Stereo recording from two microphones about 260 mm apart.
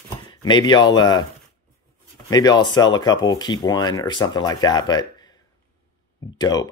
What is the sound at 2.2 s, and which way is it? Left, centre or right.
Speech, centre.